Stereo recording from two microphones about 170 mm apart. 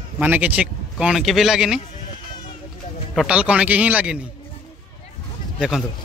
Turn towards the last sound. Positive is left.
turn(degrees=0)  # may be behind; listen again after turning